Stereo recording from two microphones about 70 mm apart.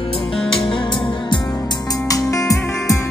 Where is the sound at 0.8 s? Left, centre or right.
Left.